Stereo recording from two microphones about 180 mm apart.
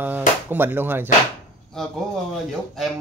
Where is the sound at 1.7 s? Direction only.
Centre (ahead or behind).